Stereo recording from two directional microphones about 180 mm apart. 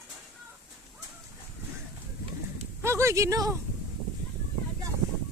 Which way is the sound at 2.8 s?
15° right (ahead or behind).